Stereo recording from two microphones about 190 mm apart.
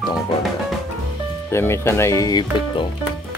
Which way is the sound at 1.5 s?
15° left (ahead or behind).